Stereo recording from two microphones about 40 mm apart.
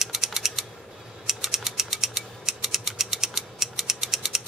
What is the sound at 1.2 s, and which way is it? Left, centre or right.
Mechanisms, centre.